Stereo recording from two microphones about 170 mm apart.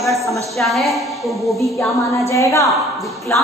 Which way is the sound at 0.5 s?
Centre (ahead or behind).